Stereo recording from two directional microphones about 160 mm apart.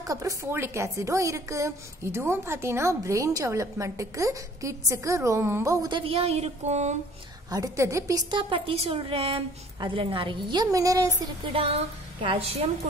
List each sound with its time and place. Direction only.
0.0 s a woman's voice: 20° right (ahead or behind); by 7.0 s 45° right (ahead or behind)
7.5 s a woman's voice: 20° right (ahead or behind)
11.4 s a woman's voice: 35° right (ahead or behind)